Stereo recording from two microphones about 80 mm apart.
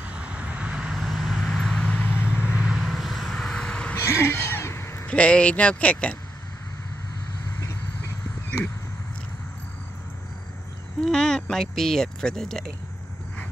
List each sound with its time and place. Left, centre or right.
0.0 s vehicle: centre
2.0 s vehicle: left
2.2 s vehicle: centre
2.8 s vehicle: centre
4.0 s a sound: left
5.0 s speech: centre
11.0 s speech: centre